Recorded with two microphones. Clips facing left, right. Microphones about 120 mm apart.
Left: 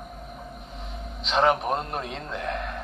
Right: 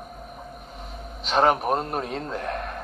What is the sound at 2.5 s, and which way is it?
Speech, 45° right (ahead or behind).